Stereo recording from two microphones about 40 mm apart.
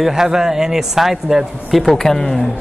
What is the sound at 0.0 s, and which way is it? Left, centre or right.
A man's voice, centre.